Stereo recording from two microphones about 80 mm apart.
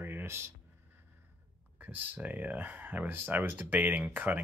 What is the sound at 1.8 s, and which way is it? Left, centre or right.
Speech, right.